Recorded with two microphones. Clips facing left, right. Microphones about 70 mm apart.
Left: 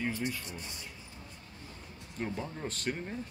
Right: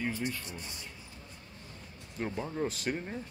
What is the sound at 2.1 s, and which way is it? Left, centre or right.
Speech, centre.